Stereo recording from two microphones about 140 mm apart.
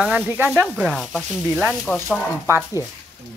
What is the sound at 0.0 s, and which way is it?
Speech, 5° right (ahead or behind).